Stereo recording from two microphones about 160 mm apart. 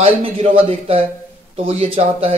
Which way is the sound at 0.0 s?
35° right (ahead or behind).